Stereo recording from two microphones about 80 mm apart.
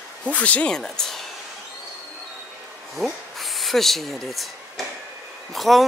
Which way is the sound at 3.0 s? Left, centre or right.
Centre.